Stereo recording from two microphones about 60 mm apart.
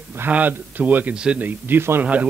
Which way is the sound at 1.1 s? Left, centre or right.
Centre.